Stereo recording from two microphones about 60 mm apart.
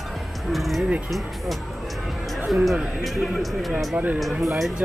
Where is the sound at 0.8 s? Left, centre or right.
Centre.